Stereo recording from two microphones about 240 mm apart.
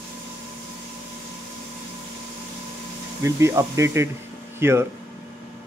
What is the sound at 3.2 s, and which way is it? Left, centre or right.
Speech, centre.